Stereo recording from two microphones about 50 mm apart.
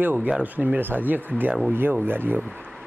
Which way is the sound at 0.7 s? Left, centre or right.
Right.